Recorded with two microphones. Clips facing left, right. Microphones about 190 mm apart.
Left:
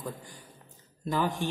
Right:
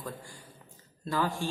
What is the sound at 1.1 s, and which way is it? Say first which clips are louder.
Speech: left 2 dB; 20° left (ahead or behind).